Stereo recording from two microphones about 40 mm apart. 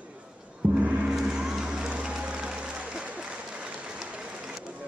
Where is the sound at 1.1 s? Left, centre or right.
Centre.